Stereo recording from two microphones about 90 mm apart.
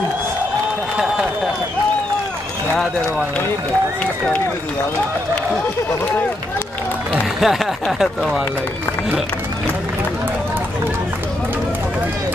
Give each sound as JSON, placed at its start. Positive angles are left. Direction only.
{"t": 2.7, "sound": "speech", "side_deg": 5}
{"t": 7.3, "sound": "speech", "side_deg": -5}